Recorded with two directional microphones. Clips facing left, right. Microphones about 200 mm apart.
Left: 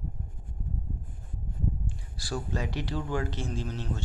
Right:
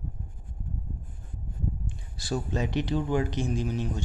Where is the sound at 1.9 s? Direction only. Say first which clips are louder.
Right 4 dB; 20° right (ahead or behind).